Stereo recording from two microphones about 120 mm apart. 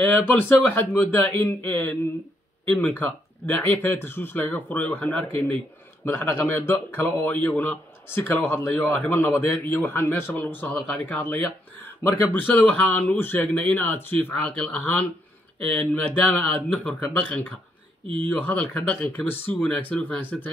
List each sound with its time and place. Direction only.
0.0 s speech: 15° left (ahead or behind)
12.4 s speech: 15° left (ahead or behind)
18.0 s speech: 45° right (ahead or behind)
18.3 s speech: 10° left (ahead or behind)